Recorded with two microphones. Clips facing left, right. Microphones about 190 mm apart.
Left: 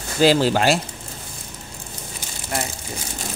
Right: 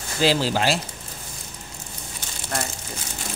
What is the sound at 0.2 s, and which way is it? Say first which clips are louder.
Speech: left 5 dB; 50° left (ahead or behind).